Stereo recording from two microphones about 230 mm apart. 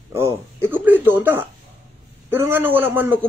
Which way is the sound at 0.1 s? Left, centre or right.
Centre.